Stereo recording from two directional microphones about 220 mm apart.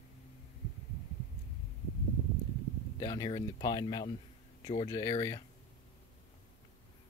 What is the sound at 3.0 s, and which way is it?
Speech, 15° left (ahead or behind).